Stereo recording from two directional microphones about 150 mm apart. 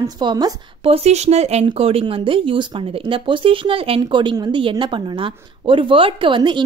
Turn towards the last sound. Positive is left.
turn(degrees=-35)  # may be behind; listen again after turning